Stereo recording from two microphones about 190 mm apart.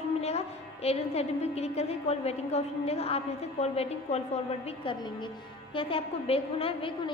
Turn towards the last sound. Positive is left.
turn(degrees=30)  # may be behind; listen again after turning